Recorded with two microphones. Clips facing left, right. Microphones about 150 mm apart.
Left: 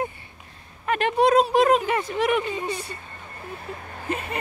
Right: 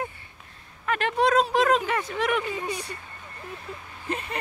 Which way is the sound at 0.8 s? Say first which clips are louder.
Left 3 dB; 20° left (ahead or behind).